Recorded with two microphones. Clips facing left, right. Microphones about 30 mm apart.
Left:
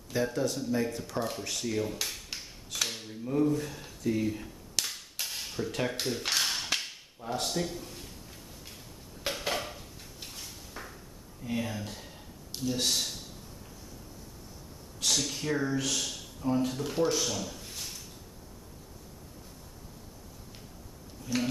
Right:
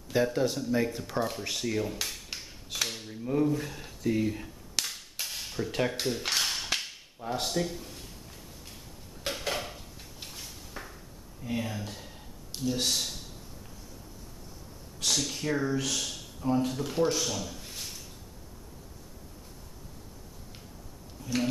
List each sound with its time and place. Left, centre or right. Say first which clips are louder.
0.1 s speech: right 3 dB; centre
2.9 s a sound: even; centre
3.3 s cap gun: even; centre
5.7 s a sound: right 3 dB; centre
7.2 s speech: right 2 dB; centre
9.2 s dishes: even; centre
11.4 s speech: even; centre
15.0 s speech: even; centre
21.2 s a sound: even; centre